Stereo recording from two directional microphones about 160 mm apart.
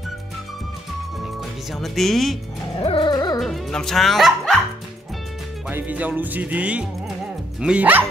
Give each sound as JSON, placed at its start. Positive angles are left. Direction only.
{"t": 1.2, "sound": "speech", "side_deg": 0}
{"t": 2.8, "sound": "music", "side_deg": 35}
{"t": 3.3, "sound": "speech", "side_deg": 0}
{"t": 5.7, "sound": "music", "side_deg": -10}